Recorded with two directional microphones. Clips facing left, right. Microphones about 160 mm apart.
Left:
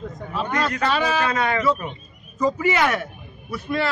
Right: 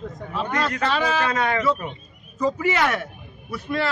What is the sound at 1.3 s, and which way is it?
Speech, 45° right (ahead or behind).